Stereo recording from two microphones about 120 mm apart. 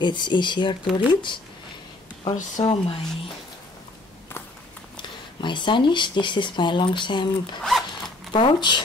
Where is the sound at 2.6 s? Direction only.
45° left (ahead or behind).